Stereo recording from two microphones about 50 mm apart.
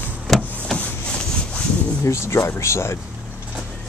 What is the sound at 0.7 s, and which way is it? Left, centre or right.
Wood, left.